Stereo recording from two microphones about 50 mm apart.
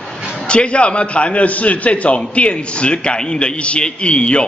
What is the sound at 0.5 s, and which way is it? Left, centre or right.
A man's voice, left.